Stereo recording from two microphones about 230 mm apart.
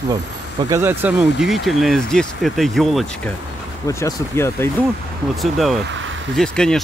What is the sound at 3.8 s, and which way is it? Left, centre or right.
Speech, centre.